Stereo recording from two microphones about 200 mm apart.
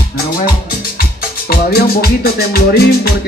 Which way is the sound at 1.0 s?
50° left (ahead or behind).